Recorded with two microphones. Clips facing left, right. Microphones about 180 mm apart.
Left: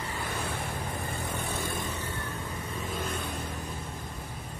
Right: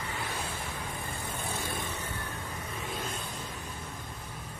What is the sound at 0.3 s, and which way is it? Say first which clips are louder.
Waves: left 3 dB; 60° left (ahead or behind).